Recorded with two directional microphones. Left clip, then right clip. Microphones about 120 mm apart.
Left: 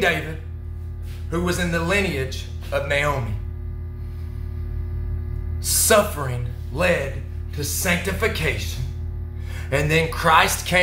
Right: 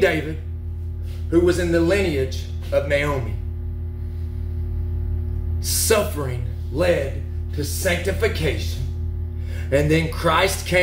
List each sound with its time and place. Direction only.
1.3 s speech: 15° left (ahead or behind)
5.6 s speech: 25° left (ahead or behind)
9.7 s speech: 15° left (ahead or behind)